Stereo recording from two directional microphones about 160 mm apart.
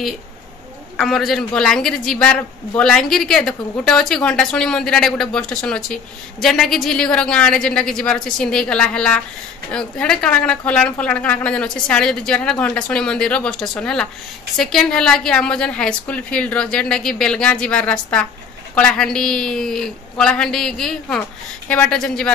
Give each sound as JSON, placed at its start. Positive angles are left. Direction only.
{"t": 0.9, "sound": "a man's voice", "side_deg": 0}